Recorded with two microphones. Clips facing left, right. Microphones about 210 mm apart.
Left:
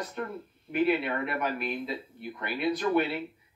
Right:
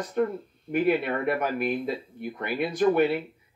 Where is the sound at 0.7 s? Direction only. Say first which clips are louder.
Right 3 dB; 50° right (ahead or behind).